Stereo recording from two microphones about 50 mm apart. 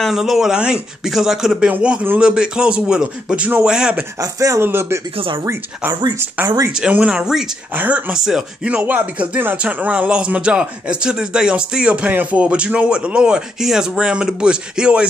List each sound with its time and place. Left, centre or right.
0.1 s speech: centre
0.6 s a man's voice: centre
1.1 s speech: centre
1.7 s a man's voice: right
4.6 s speech: right
4.9 s speech: right
6.4 s speech: right; by 8.5 s centre
8.6 s a man's voice: right
12.1 s speech: right
12.4 s a man's voice: right